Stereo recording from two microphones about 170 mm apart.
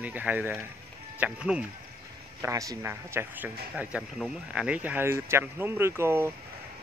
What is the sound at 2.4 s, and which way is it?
A man's voice, 20° right (ahead or behind).